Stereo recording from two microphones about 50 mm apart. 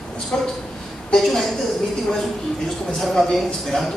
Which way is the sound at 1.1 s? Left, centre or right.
Centre.